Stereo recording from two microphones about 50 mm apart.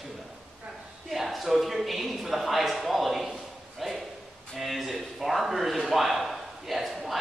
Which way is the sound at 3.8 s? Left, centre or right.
Centre.